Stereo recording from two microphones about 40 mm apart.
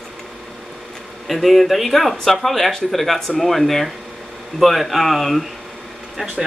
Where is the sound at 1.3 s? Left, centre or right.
Centre.